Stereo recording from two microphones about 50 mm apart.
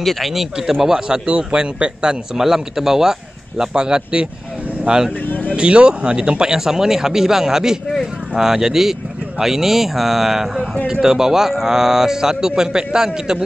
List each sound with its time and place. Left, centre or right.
0.0 s a man's voice: centre
5.3 s vehicle: left
5.6 s a man's voice: right